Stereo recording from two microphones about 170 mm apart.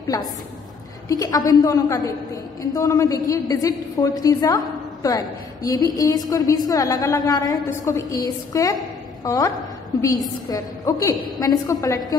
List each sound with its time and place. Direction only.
1.0 s a woman's voice: 20° left (ahead or behind)
10.5 s a woman's voice: 20° left (ahead or behind)